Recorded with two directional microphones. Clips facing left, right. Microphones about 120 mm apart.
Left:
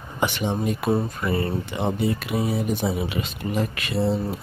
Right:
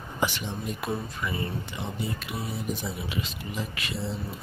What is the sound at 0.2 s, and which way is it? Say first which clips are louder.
Speech: left 6 dB; 60° left (ahead or behind).